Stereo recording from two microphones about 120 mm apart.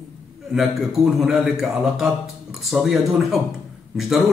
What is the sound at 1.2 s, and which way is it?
A man's voice, 5° right (ahead or behind).